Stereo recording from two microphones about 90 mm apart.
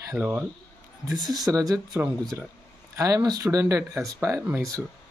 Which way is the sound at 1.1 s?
50° right (ahead or behind).